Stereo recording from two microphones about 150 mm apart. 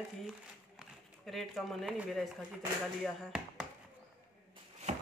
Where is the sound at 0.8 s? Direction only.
Centre (ahead or behind).